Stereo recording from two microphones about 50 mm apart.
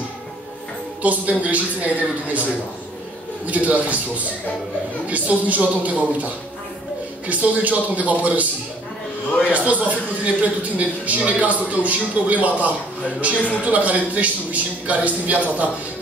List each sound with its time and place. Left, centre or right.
1.0 s a man's voice: right
3.4 s a man's voice: right
5.1 s a man's voice: right
9.5 s a man's voice: right